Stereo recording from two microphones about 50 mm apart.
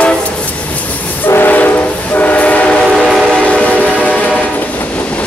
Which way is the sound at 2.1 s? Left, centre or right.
Left.